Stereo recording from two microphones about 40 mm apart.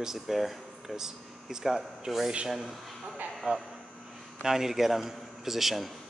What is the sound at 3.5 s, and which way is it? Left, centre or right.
Speech, right.